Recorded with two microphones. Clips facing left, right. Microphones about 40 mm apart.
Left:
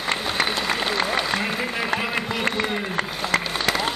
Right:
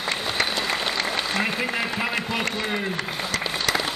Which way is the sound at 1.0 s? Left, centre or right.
Centre.